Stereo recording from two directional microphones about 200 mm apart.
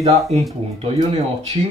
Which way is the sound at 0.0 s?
30° right (ahead or behind).